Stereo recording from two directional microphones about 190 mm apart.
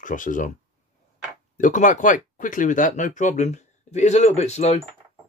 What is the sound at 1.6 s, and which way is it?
Speech, 45° left (ahead or behind).